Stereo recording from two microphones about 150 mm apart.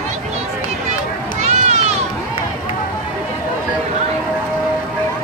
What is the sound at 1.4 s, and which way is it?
Run, 50° right (ahead or behind).